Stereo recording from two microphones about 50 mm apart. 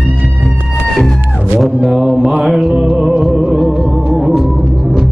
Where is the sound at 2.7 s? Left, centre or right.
Centre.